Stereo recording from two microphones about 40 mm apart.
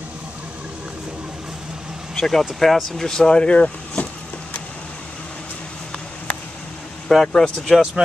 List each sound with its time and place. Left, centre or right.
2.1 s speech: centre
3.5 s speech: left
7.1 s speech: centre